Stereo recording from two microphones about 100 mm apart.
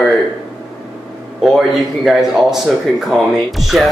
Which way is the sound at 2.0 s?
5° right (ahead or behind).